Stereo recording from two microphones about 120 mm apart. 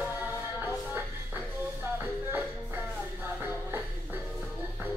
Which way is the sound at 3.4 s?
15° right (ahead or behind).